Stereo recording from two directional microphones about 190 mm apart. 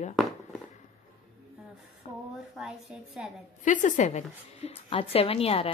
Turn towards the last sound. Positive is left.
turn(degrees=30)  # may be behind; listen again after turning